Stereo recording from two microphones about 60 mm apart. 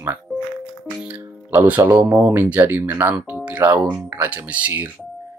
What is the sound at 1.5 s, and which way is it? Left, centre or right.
Speech, right.